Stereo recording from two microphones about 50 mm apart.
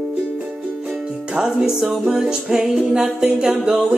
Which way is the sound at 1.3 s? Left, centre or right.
Centre.